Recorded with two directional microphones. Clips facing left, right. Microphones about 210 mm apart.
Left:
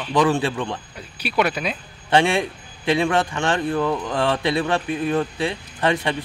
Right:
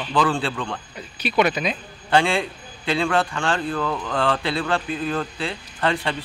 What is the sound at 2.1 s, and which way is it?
A man's voice, 20° left (ahead or behind).